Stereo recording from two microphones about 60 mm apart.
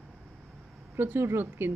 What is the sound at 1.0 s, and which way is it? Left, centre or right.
Speech, right.